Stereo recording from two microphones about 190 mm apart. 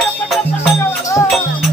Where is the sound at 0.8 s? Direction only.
15° left (ahead or behind).